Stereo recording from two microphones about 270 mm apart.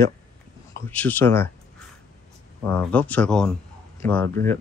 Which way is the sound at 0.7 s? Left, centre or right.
Centre.